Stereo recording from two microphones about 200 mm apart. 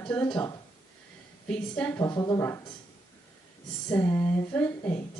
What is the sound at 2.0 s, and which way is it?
Speech, 20° left (ahead or behind).